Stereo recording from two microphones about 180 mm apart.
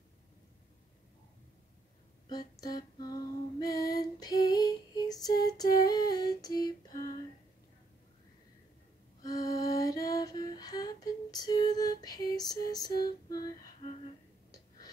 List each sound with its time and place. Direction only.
2.6 s female singing: 20° left (ahead or behind)
9.2 s music: 20° left (ahead or behind)
13.0 s female singing: 20° left (ahead or behind)